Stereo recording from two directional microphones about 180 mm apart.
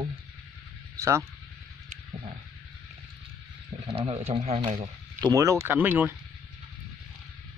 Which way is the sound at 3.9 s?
35° right (ahead or behind).